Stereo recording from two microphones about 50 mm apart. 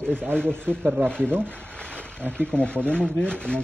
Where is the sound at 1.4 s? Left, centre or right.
Left.